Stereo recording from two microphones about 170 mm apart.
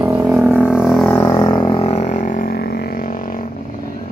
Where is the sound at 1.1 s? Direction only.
15° left (ahead or behind).